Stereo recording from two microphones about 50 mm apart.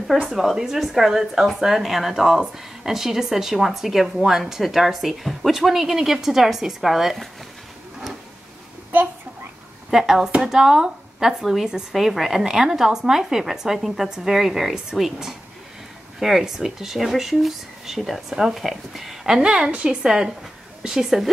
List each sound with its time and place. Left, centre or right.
0.4 s a woman's voice: centre
9.8 s a woman's voice: centre